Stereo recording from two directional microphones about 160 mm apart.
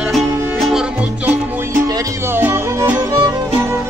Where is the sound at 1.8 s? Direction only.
20° right (ahead or behind).